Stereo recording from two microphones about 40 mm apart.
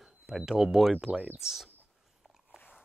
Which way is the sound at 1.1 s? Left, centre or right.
Right.